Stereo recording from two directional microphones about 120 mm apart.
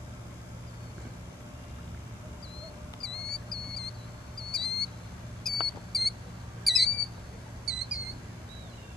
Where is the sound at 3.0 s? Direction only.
5° left (ahead or behind).